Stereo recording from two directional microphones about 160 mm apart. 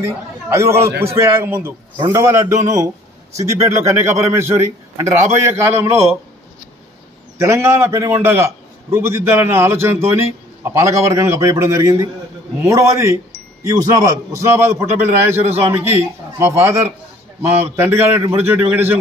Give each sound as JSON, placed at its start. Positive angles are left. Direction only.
{"t": 0.0, "sound": "a man's voice", "side_deg": -20}
{"t": 7.3, "sound": "a man's voice", "side_deg": -15}